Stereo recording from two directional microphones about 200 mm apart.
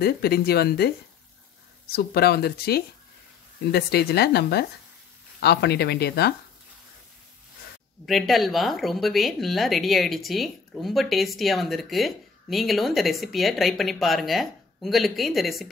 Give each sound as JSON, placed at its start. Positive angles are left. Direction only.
{"t": 0.0, "sound": "speech", "side_deg": 50}
{"t": 8.0, "sound": "speech", "side_deg": 0}